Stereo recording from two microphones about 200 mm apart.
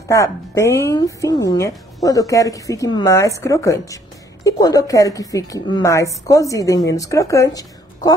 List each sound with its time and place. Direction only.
0.1 s a woman's voice: 15° left (ahead or behind)